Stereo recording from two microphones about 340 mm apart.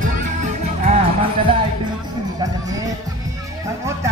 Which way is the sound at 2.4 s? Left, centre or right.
Centre.